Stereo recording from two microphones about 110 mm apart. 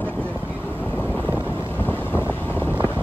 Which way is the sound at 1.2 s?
15° right (ahead or behind).